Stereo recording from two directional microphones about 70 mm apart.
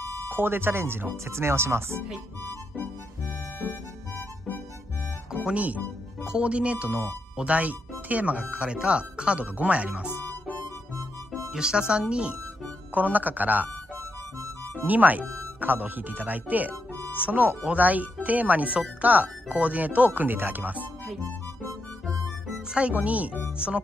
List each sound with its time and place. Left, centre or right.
0.4 s speech: right
5.3 s music: centre
6.2 s speech: centre
11.5 s speech: centre
14.9 s speech: right
22.8 s speech: centre